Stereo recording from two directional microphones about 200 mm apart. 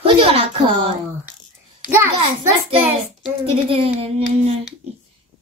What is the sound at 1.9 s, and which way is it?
Speech, 10° right (ahead or behind).